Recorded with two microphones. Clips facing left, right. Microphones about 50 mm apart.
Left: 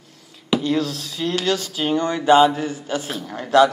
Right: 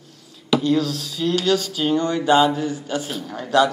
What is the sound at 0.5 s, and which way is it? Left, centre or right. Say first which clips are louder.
A man's voice: right 2 dB; left.